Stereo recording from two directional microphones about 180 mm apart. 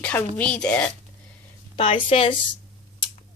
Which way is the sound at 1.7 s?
30° left (ahead or behind).